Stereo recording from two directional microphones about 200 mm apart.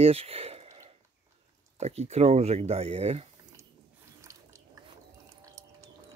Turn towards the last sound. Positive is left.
turn(degrees=-15)  # may be behind; listen again after turning